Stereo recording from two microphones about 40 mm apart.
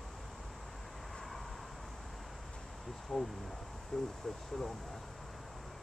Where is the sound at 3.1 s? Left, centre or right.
Centre.